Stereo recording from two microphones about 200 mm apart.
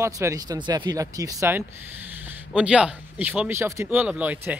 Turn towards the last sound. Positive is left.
turn(degrees=-10)  # may be behind; listen again after turning